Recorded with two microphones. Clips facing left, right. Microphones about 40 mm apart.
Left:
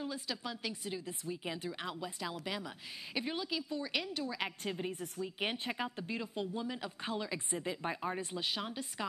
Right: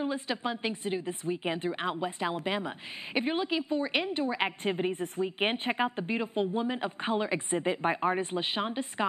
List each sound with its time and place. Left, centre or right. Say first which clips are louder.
0.0 s a woman's voice: right 9 dB; right